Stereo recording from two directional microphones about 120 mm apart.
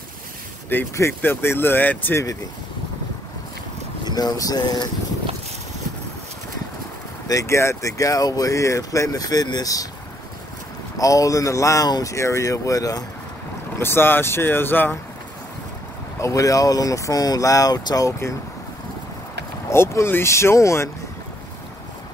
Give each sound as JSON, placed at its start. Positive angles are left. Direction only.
{"t": 0.7, "sound": "speech", "side_deg": 20}
{"t": 4.0, "sound": "speech", "side_deg": 35}
{"t": 7.2, "sound": "speech", "side_deg": 25}
{"t": 11.0, "sound": "speech", "side_deg": 30}
{"t": 13.7, "sound": "speech", "side_deg": 20}
{"t": 16.2, "sound": "speech", "side_deg": 25}
{"t": 19.7, "sound": "speech", "side_deg": 20}